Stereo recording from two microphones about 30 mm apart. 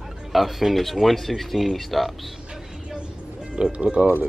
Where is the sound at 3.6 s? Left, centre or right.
Right.